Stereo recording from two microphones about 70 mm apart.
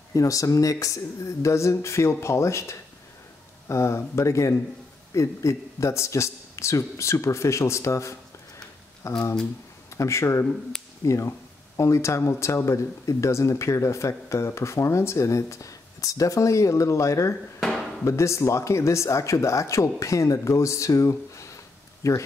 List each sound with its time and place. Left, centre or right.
0.1 s speech: left